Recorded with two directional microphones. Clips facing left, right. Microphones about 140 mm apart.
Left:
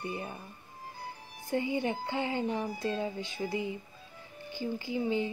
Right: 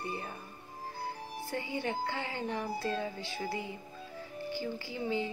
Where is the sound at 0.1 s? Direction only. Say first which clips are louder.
Left 2 dB; 20° left (ahead or behind).